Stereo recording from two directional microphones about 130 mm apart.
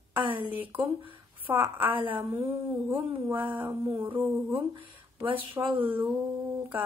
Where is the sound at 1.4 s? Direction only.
15° right (ahead or behind).